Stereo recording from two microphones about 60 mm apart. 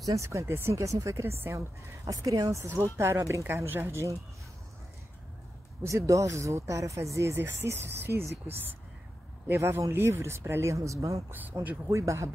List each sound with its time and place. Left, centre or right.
0.0 s speech: right
2.0 s speech: right
2.6 s speech: right
5.9 s speech: right
7.3 s speech: right
9.7 s speech: right